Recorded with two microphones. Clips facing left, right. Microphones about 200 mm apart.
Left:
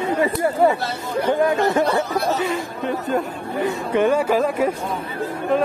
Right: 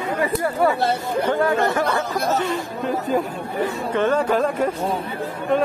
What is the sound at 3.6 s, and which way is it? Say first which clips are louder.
Speech: left 3 dB; 10° left (ahead or behind).